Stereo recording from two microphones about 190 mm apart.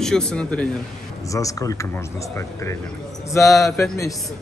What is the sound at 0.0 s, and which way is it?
Speech, 5° left (ahead or behind).